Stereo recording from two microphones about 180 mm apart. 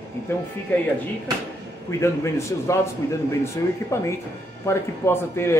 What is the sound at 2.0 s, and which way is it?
Speech, 15° left (ahead or behind).